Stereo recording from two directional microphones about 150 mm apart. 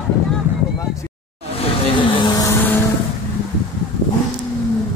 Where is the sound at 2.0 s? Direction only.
25° left (ahead or behind).